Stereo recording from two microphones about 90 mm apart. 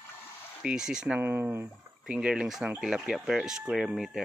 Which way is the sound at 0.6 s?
10° right (ahead or behind).